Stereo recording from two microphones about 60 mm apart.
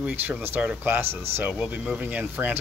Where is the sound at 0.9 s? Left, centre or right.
Right.